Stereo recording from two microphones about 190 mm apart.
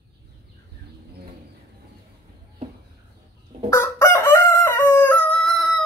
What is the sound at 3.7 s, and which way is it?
Crowing, 15° left (ahead or behind).